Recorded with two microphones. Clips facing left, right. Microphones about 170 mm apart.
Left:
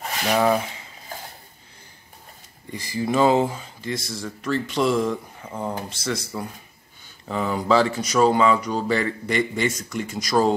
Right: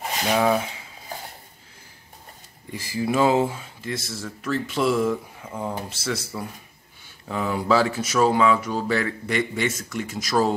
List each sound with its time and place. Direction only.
0.0 s a sound: 20° right (ahead or behind)
0.4 s speech: 5° right (ahead or behind)
2.7 s speech: 5° right (ahead or behind)